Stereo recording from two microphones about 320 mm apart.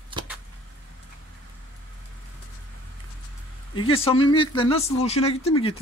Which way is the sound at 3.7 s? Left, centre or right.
Centre.